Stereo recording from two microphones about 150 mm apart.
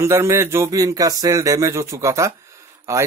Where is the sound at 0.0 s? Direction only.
20° right (ahead or behind).